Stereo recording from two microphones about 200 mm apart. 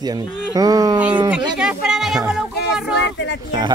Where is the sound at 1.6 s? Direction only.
5° right (ahead or behind).